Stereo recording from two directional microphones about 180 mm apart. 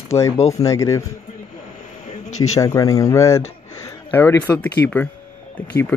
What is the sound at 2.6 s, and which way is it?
Speech, 20° left (ahead or behind).